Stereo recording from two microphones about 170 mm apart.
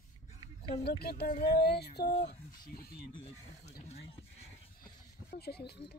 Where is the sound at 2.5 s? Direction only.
60° left (ahead or behind).